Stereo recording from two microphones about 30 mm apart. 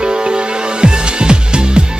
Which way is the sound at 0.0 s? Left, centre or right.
Right.